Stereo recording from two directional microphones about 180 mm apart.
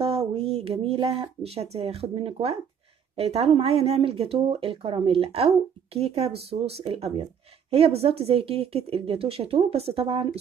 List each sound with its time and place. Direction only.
0.0 s speech: 35° right (ahead or behind)